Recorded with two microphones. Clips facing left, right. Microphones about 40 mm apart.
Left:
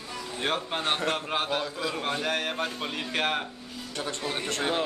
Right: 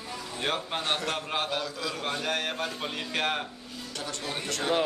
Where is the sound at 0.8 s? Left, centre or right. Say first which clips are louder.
Left 2 dB; left.